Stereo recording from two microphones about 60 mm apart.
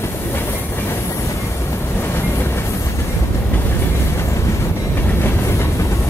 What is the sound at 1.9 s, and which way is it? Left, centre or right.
Train, left.